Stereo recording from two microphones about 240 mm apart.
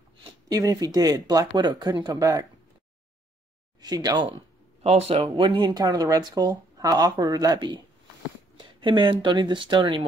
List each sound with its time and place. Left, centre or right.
0.2 s a sound: centre
0.9 s speech: centre
3.8 s speech: centre